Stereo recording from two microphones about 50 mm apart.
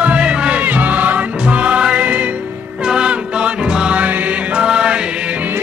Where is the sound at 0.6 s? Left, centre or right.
Right.